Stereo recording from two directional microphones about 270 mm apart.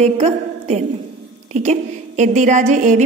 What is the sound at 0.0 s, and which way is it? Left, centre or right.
A woman's voice, right.